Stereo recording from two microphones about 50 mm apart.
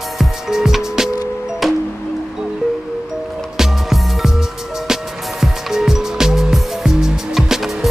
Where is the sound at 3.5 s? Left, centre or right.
Centre.